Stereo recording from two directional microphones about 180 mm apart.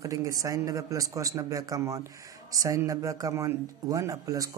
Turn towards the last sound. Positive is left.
turn(degrees=-20)  # may be behind; listen again after turning